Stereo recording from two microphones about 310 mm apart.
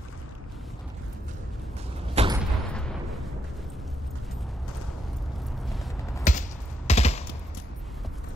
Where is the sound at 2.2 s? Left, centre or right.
Right.